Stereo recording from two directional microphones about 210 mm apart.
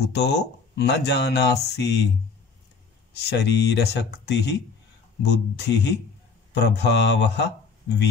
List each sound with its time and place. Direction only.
0.0 s speech: 50° left (ahead or behind)
3.2 s speech: 55° left (ahead or behind)